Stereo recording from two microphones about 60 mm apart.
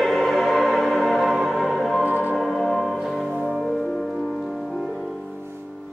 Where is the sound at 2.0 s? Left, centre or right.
Right.